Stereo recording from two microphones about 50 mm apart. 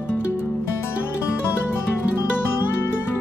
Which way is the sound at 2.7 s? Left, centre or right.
Left.